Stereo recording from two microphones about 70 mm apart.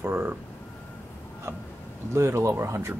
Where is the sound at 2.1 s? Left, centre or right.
Right.